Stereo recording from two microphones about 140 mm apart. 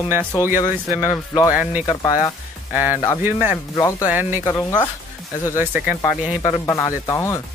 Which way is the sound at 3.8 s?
20° left (ahead or behind).